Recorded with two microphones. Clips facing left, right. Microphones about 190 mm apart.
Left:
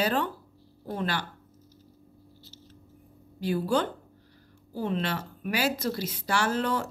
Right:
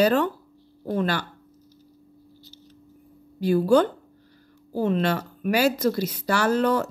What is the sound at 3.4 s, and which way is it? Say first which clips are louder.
Speech: right 8 dB; 45° right (ahead or behind).